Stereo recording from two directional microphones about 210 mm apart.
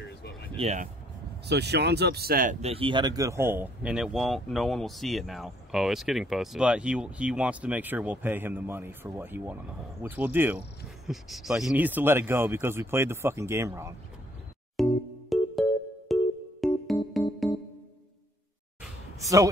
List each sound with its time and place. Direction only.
0.0 s a sound: 50° left (ahead or behind)
0.6 s speech: 30° right (ahead or behind)
1.5 s speech: 55° right (ahead or behind)
2.6 s speech: 25° right (ahead or behind)
14.8 s music: centre (ahead or behind)